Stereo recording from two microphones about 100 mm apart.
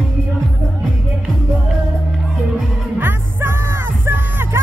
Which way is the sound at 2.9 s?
20° right (ahead or behind).